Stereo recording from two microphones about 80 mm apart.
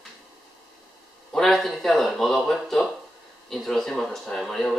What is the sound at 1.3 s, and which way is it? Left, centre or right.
Speech, centre.